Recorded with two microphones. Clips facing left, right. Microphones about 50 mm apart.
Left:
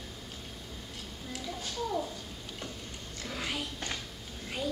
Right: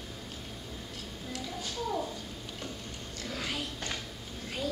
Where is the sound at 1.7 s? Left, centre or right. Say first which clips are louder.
Even; centre.